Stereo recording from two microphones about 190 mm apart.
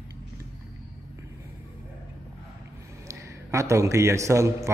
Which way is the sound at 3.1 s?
15° right (ahead or behind).